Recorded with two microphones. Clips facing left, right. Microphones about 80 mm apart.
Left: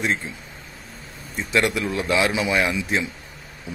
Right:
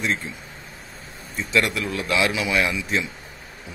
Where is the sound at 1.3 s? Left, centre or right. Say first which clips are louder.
Left 1 dB; left.